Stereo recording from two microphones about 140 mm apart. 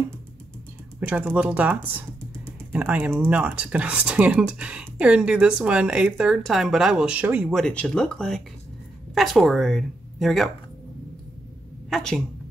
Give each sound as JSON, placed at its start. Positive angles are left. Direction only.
{"t": 1.0, "sound": "speech", "side_deg": -10}
{"t": 7.5, "sound": "a woman's voice", "side_deg": 5}
{"t": 11.9, "sound": "a woman's voice", "side_deg": 5}